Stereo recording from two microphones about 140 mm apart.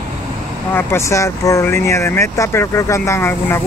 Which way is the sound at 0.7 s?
15° left (ahead or behind).